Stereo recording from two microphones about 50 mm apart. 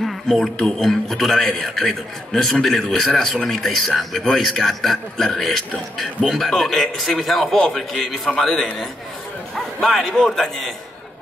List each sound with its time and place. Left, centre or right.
0.0 s a sound: centre
0.6 s a man's voice: centre
3.1 s speech: centre
3.4 s a man's voice: centre